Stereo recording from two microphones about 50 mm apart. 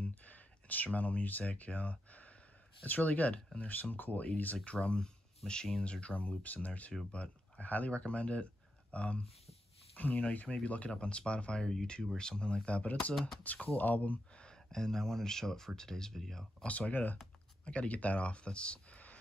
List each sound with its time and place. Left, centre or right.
0.0 s speech: left
4.8 s speech: centre; by 14.4 s left
14.4 s speech: centre
16.6 s speech: left